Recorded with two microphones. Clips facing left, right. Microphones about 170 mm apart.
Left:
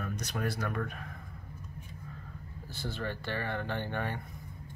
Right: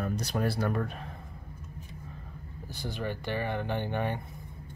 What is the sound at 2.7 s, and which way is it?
Speech, 15° right (ahead or behind).